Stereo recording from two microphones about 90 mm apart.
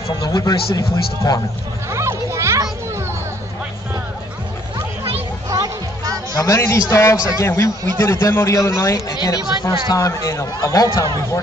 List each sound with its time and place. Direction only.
0.2 s a man's voice: 45° left (ahead or behind)
1.9 s a sound: 35° right (ahead or behind)
5.5 s music: 45° right (ahead or behind)
6.3 s a man's voice: 35° left (ahead or behind)
9.1 s a man's voice: 50° left (ahead or behind)
9.9 s a man's voice: 35° left (ahead or behind)